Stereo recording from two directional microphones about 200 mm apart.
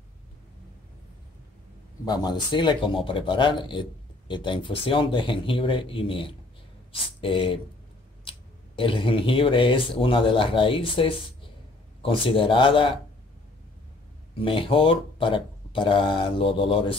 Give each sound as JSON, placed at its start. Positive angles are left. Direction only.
{"t": 2.0, "sound": "speech", "side_deg": 20}
{"t": 14.4, "sound": "speech", "side_deg": 25}